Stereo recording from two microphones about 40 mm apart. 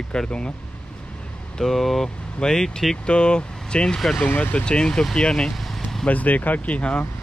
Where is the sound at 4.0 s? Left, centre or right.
Centre.